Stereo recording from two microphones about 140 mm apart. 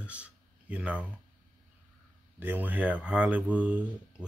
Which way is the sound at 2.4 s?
15° right (ahead or behind).